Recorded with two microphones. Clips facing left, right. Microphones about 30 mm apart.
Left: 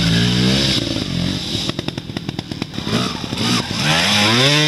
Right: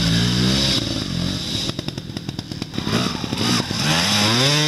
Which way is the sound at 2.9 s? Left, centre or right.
Centre.